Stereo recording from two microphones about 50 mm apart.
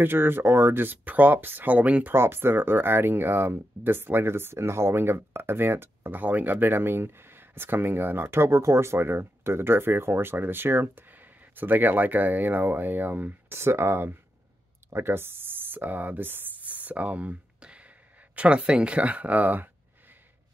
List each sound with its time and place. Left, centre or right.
0.0 s speech: right
1.0 s speech: right
2.1 s speech: right
13.6 s speech: right